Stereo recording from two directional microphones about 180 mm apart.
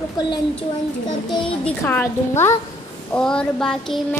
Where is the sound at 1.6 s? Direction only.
10° left (ahead or behind).